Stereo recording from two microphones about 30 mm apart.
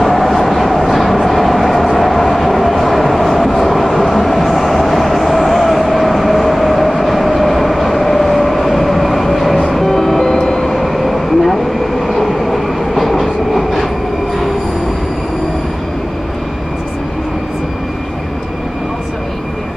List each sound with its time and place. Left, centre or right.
0.0 s train: centre
4.1 s vehicle: centre
9.8 s train: centre
10.2 s vehicle: left
10.8 s vehicle: centre
12.1 s train: centre